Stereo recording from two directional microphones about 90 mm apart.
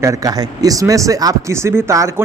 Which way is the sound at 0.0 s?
40° right (ahead or behind).